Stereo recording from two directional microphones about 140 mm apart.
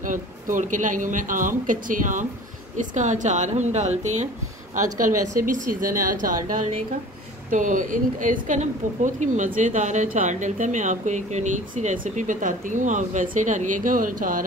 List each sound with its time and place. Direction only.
0.0 s speech: 65° right (ahead or behind)